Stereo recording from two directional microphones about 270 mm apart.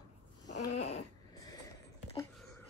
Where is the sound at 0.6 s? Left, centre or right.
Left.